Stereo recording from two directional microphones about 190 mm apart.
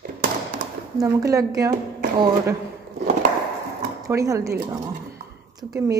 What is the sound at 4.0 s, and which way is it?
Speech, 15° right (ahead or behind).